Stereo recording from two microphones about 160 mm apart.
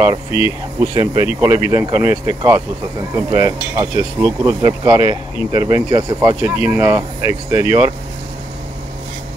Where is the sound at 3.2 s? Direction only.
20° right (ahead or behind).